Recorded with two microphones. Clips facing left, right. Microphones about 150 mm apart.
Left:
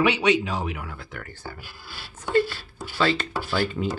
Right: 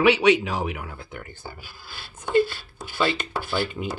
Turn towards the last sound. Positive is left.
turn(degrees=-20)  # may be behind; listen again after turning